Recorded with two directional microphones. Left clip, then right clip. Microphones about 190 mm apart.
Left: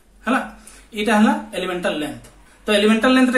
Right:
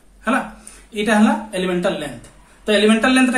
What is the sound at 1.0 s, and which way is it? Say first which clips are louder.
A man's voice: even; 15° right (ahead or behind).